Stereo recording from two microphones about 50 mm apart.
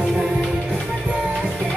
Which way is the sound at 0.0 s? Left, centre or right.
Right.